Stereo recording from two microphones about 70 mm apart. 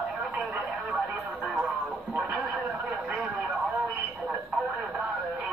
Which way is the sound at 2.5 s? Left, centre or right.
Right.